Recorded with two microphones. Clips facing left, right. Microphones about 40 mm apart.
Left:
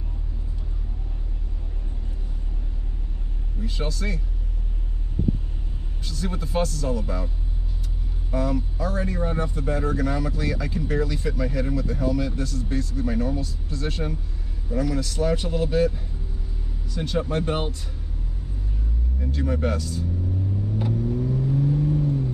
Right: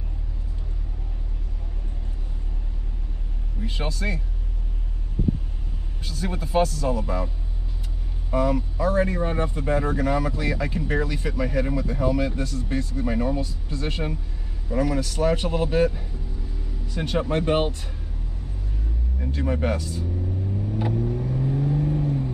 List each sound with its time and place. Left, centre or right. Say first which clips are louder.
3.6 s speech: right 1 dB; right
6.0 s speech: even; centre
6.9 s speech: right 2 dB; right
8.3 s speech: right 3 dB; right
19.1 s speech: even; centre
20.8 s vehicle: left 1 dB; right